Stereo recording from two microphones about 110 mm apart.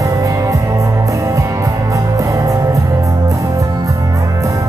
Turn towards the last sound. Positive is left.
turn(degrees=-30)  # may be behind; listen again after turning